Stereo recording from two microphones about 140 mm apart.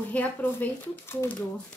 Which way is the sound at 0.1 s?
10° left (ahead or behind).